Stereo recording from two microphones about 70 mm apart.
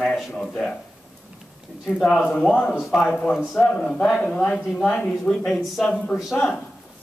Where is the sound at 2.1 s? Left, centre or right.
Centre.